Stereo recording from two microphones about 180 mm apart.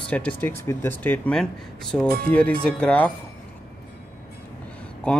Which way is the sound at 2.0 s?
60° right (ahead or behind).